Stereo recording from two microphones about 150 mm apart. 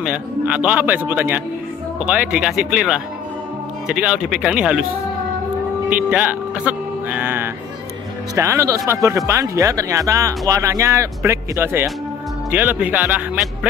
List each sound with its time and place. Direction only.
0.0 s a man's voice: 10° right (ahead or behind)
5.9 s a man's voice: 10° right (ahead or behind)